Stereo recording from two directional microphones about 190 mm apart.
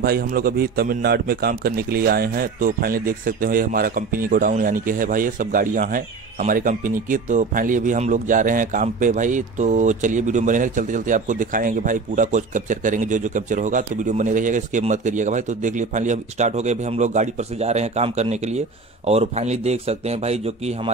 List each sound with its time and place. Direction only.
0.0 s a man's voice: 50° right (ahead or behind); by 20.9 s 35° right (ahead or behind)